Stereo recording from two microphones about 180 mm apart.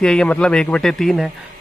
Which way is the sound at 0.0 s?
5° left (ahead or behind).